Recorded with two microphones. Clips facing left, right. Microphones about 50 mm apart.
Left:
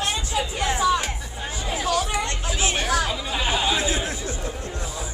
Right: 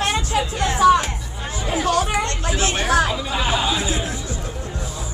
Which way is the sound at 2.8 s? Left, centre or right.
Right.